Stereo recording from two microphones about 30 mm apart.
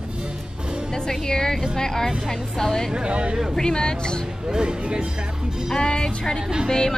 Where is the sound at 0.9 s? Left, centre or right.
Centre.